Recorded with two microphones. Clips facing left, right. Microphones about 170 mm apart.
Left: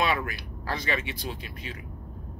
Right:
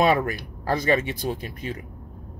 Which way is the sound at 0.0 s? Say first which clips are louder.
Right 7 dB; 45° right (ahead or behind).